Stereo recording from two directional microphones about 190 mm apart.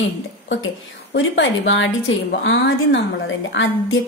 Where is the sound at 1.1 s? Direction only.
80° left.